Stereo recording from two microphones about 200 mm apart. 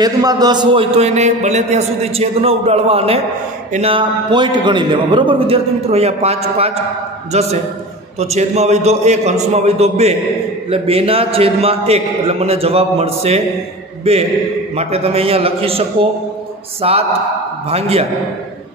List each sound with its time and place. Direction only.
0.0 s a man's voice: 20° right (ahead or behind)